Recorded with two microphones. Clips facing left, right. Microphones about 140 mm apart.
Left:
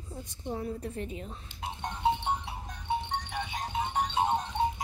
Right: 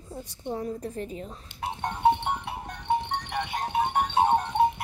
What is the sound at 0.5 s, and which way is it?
Speech, 35° right (ahead or behind).